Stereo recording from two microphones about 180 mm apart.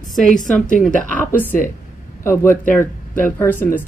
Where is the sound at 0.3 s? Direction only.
45° left (ahead or behind).